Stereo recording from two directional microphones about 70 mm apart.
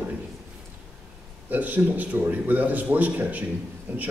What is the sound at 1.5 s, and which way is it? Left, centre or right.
A man's voice, right.